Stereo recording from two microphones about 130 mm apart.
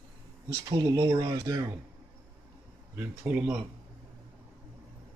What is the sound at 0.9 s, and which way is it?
Speech, 25° right (ahead or behind).